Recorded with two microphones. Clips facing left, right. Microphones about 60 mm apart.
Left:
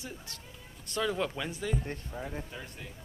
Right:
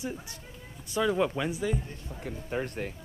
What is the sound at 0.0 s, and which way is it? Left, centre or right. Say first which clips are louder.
Speech: right 7 dB; centre.